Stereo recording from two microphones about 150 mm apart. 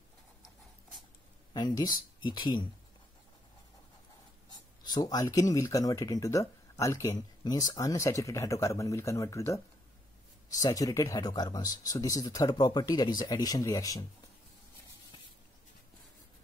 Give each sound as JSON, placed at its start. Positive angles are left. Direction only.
{"t": 1.5, "sound": "speech", "side_deg": 25}
{"t": 4.5, "sound": "speech", "side_deg": 25}